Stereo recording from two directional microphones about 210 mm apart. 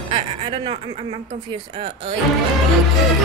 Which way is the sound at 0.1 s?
25° right (ahead or behind).